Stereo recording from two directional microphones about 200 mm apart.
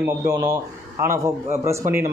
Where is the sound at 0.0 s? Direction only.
15° right (ahead or behind).